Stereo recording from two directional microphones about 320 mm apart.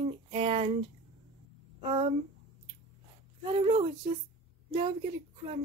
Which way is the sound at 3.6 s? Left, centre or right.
Centre.